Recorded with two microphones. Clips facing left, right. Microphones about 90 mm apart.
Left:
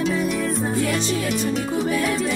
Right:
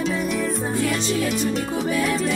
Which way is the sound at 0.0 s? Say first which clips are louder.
Left 1 dB; centre (ahead or behind).